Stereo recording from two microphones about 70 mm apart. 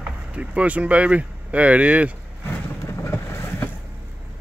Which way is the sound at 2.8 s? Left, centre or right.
Left.